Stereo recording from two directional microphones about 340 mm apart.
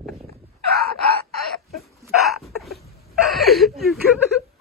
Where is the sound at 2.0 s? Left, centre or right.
Centre.